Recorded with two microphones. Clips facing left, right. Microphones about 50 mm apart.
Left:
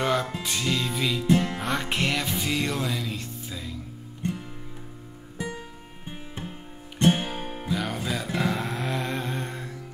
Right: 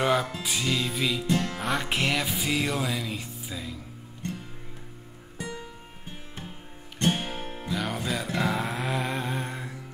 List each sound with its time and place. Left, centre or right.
0.0 s music: centre
1.2 s music: centre
1.6 s music: centre
5.4 s music: centre
7.7 s music: centre